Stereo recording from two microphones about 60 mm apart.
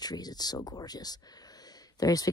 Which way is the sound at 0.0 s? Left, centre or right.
Left.